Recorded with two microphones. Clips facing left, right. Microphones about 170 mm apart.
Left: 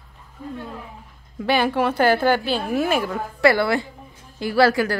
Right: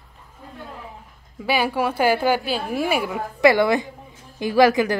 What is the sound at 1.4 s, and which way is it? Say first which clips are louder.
A woman's voice: left 2 dB; 10° right (ahead or behind).